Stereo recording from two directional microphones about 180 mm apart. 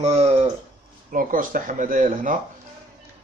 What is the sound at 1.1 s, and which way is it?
Speech, 50° right (ahead or behind).